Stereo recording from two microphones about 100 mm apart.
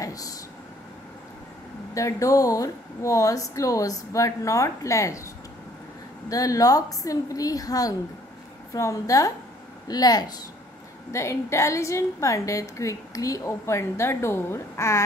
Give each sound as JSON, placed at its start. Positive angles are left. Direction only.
{"t": 0.0, "sound": "vehicle", "side_deg": 35}
{"t": 2.0, "sound": "speech", "side_deg": 35}
{"t": 11.1, "sound": "a woman's voice", "side_deg": 30}